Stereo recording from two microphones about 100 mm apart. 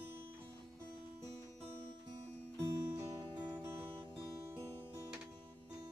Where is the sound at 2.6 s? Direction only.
35° right (ahead or behind).